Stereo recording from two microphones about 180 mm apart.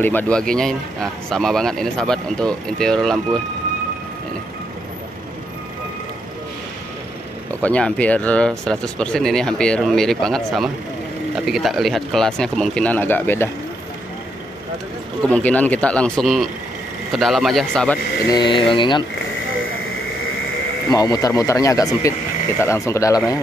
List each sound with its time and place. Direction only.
0.0 s speech: 10° left (ahead or behind)
7.6 s speech: 5° left (ahead or behind)
15.2 s speech: 10° left (ahead or behind)
18.2 s speech: 25° left (ahead or behind)
20.9 s speech: 20° left (ahead or behind)